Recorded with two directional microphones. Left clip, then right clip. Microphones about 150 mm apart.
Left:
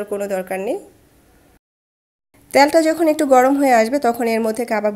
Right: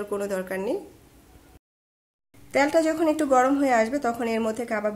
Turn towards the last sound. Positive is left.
turn(degrees=45)  # may be behind; listen again after turning